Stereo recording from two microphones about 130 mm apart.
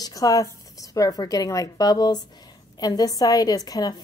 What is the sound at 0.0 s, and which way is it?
A woman's voice, 30° left (ahead or behind).